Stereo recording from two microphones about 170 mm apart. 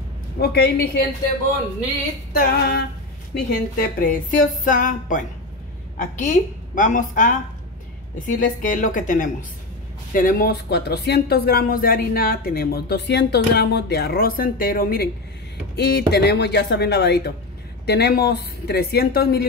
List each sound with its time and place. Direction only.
0.4 s speech: 70° left (ahead or behind)
2.3 s speech: 65° left (ahead or behind)
8.4 s speech: 50° left (ahead or behind)
15.7 s speech: 75° left (ahead or behind)